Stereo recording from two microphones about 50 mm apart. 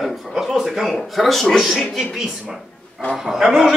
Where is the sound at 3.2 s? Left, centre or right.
Centre.